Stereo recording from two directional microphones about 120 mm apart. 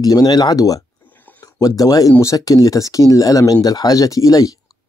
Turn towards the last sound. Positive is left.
turn(degrees=30)  # may be behind; listen again after turning